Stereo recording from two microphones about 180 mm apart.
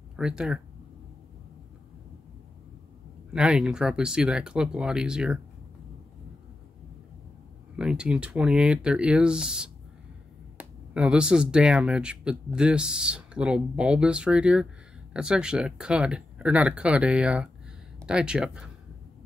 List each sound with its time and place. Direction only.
0.1 s speech: 5° right (ahead or behind)
3.3 s speech: 5° right (ahead or behind)
7.7 s speech: 5° right (ahead or behind)